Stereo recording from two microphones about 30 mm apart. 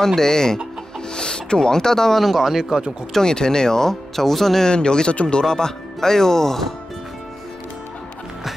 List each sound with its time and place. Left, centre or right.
0.0 s speech: centre
2.1 s speech: centre
3.1 s speech: centre
4.6 s speech: left
5.1 s speech: left
5.4 s speech: left